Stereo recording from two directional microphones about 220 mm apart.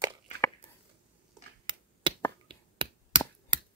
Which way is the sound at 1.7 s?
20° right (ahead or behind).